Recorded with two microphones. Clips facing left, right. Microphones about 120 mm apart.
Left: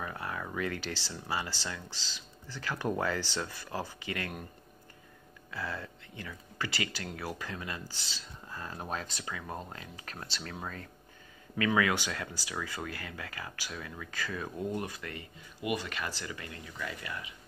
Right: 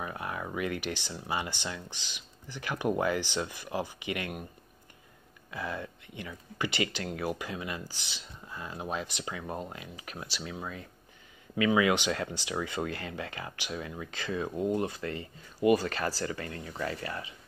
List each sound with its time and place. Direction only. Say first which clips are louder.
0.0 s speech: right 2 dB; 20° right (ahead or behind)
5.5 s speech: right 2 dB; 20° right (ahead or behind); by 17.3 s 35° right (ahead or behind)